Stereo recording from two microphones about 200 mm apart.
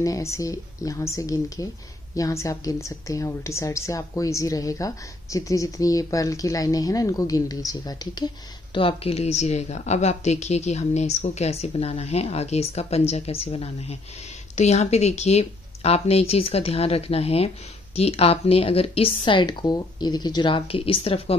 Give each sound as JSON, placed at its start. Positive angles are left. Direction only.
{"t": 0.0, "sound": "a woman's voice", "side_deg": 15}